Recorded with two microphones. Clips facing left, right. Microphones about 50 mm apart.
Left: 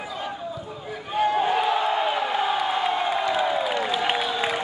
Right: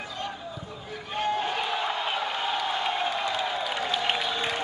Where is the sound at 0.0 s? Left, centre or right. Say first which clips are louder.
Left 4 dB; centre.